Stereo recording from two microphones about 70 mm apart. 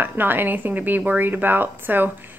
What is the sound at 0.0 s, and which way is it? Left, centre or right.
A woman's voice, right.